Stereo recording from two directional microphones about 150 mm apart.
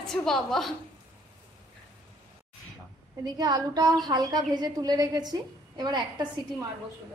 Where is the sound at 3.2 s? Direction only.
30° right (ahead or behind).